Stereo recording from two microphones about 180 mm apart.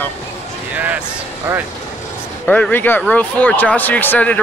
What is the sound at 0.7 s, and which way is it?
Speech, 10° right (ahead or behind).